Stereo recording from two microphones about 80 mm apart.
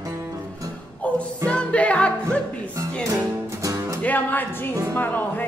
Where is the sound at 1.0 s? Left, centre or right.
Centre.